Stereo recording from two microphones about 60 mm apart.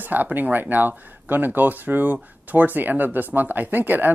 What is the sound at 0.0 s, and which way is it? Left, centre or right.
Speech, right.